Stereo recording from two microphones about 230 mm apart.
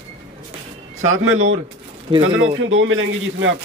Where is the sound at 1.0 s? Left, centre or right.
Right.